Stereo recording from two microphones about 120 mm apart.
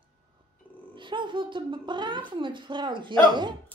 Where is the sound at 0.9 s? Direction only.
40° right (ahead or behind).